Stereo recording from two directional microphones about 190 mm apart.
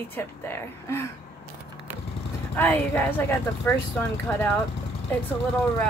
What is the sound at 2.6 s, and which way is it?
Speech, 10° left (ahead or behind).